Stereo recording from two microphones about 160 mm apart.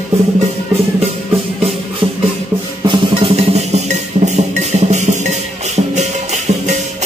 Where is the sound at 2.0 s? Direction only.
35° right (ahead or behind).